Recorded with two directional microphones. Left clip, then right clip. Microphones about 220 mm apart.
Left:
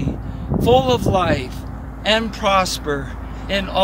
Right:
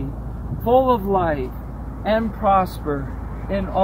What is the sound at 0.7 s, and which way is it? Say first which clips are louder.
Speech: left 1 dB; 35° left (ahead or behind).